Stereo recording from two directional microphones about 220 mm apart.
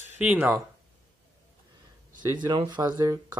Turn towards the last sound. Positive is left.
turn(degrees=-15)  # may be behind; listen again after turning